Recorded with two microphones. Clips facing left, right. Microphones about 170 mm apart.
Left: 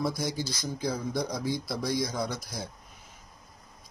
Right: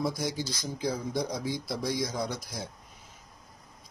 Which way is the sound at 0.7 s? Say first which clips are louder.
Even; 15° right (ahead or behind).